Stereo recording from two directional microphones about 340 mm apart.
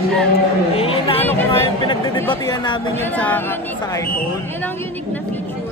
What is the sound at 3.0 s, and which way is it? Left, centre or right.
Speech, centre.